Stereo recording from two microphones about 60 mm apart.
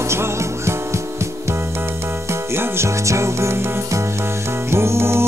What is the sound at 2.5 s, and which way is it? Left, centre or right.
Music, right.